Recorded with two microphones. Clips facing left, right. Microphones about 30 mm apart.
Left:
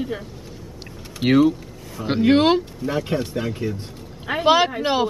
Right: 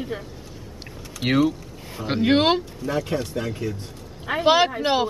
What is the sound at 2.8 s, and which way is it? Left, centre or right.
Speech, centre.